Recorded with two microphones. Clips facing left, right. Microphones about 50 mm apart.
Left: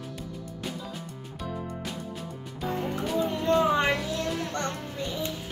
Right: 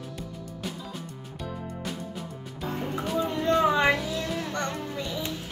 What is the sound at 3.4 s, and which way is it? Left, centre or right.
Music, right.